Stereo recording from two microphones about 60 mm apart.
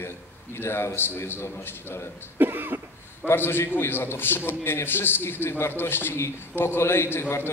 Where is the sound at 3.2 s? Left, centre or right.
Left.